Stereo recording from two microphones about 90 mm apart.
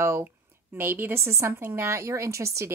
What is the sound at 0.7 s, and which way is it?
A woman's voice, 25° right (ahead or behind).